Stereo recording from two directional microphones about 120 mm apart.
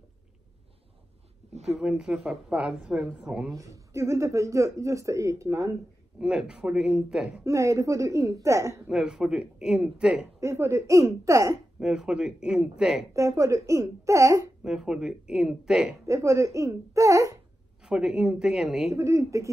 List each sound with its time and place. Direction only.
1.5 s speech: 65° right (ahead or behind)
1.8 s a woman's voice: 5° right (ahead or behind)
3.5 s speech: 30° right (ahead or behind)
6.1 s a woman's voice: 5° right (ahead or behind)
7.4 s speech: 25° right (ahead or behind)
8.8 s a woman's voice: 5° right (ahead or behind)
10.4 s speech: 25° right (ahead or behind)
11.8 s a woman's voice: 5° right (ahead or behind)
13.1 s speech: 25° right (ahead or behind)
14.6 s a woman's voice: 5° right (ahead or behind)
16.1 s speech: 25° right (ahead or behind)
17.8 s speech: 5° right (ahead or behind)
18.9 s speech: 25° right (ahead or behind)